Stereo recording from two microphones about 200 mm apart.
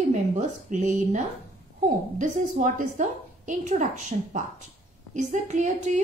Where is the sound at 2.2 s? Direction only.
40° right (ahead or behind).